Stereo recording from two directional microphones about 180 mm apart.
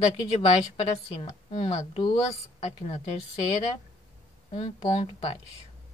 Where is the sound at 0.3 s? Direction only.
35° left (ahead or behind).